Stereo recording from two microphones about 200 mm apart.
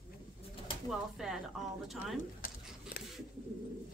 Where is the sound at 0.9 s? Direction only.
Centre (ahead or behind).